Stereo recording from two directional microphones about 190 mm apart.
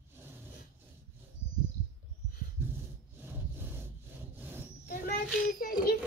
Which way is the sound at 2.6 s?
10° right (ahead or behind).